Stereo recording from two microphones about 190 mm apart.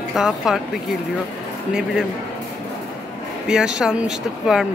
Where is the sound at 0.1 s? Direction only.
Centre (ahead or behind).